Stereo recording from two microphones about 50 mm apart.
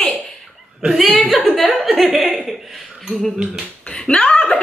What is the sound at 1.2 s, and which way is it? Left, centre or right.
Chuckle, centre.